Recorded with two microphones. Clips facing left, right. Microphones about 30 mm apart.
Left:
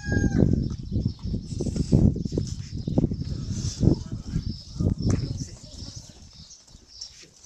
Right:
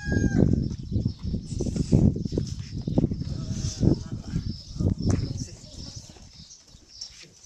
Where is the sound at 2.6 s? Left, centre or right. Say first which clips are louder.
Even; centre.